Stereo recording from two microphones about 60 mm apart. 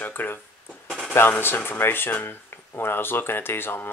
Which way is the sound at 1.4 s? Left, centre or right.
Left.